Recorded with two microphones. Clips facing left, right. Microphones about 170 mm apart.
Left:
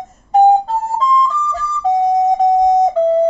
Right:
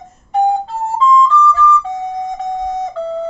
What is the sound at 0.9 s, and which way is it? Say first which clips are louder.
Flute: right 6 dB; 40° left (ahead or behind).